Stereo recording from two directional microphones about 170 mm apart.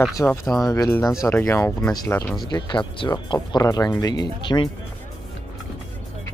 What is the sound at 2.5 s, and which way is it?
Speech, 25° left (ahead or behind).